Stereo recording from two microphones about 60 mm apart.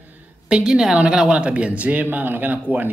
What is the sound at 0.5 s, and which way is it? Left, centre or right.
A woman's voice, centre.